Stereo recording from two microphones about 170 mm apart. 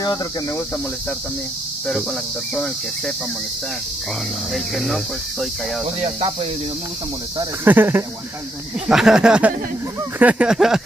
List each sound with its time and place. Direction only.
4.7 s speech: centre (ahead or behind)
5.9 s speech: 40° right (ahead or behind)
7.6 s speech: 10° right (ahead or behind)